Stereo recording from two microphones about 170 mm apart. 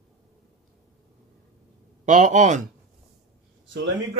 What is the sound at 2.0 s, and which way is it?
Speech, 45° right (ahead or behind).